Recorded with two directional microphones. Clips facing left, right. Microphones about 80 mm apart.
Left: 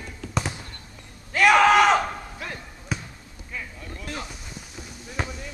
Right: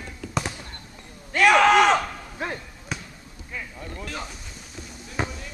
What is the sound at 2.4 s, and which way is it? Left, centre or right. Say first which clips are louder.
Basketball bounce: right 7 dB; right.